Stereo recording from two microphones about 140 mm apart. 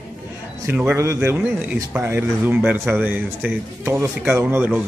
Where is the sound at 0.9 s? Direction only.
20° right (ahead or behind).